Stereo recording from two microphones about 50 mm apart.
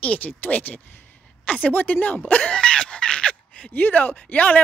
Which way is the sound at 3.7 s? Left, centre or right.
Left.